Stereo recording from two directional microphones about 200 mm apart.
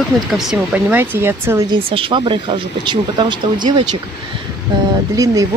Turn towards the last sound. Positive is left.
turn(degrees=-15)  # may be behind; listen again after turning